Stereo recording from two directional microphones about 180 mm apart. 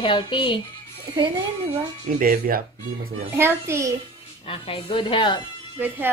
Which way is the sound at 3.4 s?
15° right (ahead or behind).